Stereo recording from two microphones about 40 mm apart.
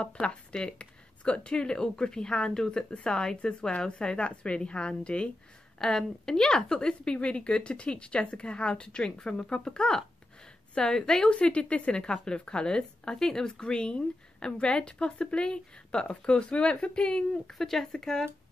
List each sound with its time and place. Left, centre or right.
0.0 s a woman's voice: left
5.8 s a woman's voice: centre
17.5 s speech: centre